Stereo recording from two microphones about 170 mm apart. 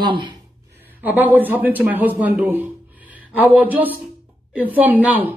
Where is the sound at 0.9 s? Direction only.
10° right (ahead or behind).